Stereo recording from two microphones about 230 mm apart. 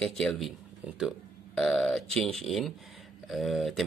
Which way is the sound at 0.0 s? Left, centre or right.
Centre.